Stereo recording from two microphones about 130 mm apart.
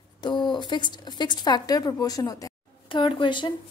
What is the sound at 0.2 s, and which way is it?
Speech, 35° left (ahead or behind).